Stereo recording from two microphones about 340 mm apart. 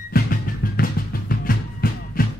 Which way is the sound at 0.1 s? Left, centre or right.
Left.